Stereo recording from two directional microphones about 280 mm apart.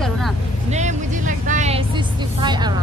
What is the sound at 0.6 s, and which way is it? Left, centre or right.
Speech, right.